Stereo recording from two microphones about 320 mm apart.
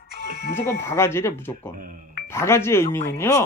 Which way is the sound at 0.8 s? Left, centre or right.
Centre.